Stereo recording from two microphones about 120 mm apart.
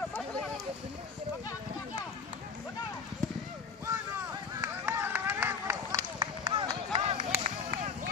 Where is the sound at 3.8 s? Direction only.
20° right (ahead or behind).